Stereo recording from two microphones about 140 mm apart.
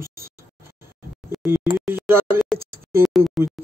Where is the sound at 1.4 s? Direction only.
15° right (ahead or behind).